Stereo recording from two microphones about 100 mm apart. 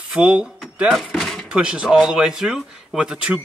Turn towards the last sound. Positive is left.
turn(degrees=-10)  # may be behind; listen again after turning